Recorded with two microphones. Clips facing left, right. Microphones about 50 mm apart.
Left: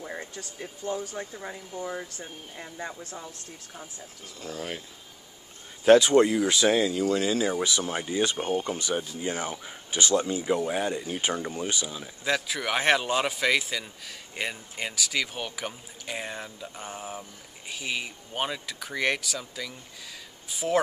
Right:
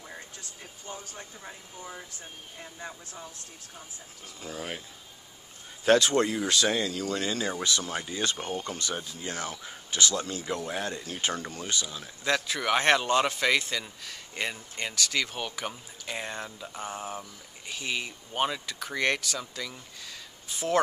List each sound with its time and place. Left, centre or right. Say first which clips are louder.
0.1 s speech: left 6 dB; left
4.4 s speech: left 2 dB; centre
5.9 s speech: left 5 dB; centre